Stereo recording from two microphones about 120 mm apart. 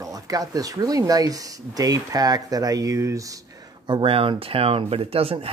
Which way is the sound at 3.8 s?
45° right (ahead or behind).